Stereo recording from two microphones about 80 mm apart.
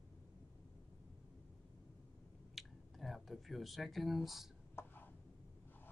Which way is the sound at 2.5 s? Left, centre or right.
Centre.